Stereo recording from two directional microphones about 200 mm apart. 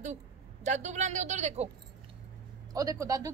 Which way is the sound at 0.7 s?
35° right (ahead or behind).